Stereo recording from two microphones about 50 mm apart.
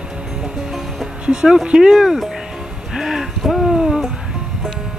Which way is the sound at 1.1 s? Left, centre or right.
Centre.